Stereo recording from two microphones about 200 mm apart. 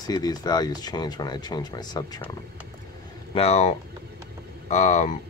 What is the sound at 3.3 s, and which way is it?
Speech, 30° left (ahead or behind).